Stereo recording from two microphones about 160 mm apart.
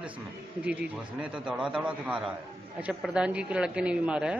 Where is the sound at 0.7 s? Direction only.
10° right (ahead or behind).